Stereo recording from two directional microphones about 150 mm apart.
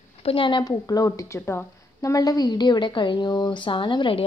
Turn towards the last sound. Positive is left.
turn(degrees=35)  # may be behind; listen again after turning